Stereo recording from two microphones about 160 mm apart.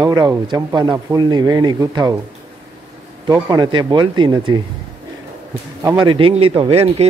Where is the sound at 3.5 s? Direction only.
25° right (ahead or behind).